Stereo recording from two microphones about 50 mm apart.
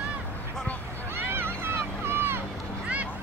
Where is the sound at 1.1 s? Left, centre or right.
Right.